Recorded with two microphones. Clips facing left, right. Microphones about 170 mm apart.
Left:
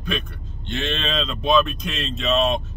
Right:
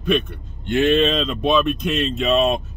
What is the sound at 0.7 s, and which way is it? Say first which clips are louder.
Speech: right 10 dB; 5° right (ahead or behind).